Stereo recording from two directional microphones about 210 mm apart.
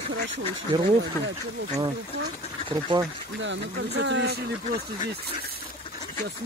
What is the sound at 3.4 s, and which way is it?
Speech, 55° right (ahead or behind).